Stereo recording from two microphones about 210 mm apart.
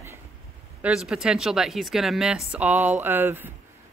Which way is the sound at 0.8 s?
5° right (ahead or behind).